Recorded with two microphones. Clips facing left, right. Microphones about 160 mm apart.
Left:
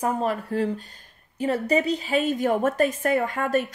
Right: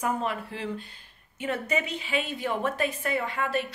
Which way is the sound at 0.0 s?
40° left (ahead or behind).